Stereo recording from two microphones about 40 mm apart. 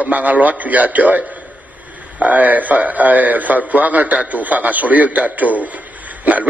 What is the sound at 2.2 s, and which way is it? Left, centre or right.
A man's voice, right.